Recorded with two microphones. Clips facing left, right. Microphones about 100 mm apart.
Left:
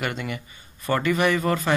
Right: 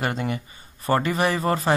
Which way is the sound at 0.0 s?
35° right (ahead or behind).